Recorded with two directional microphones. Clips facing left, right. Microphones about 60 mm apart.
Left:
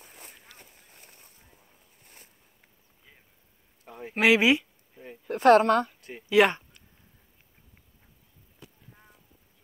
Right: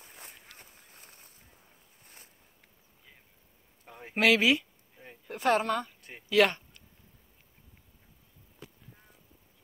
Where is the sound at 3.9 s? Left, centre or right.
Centre.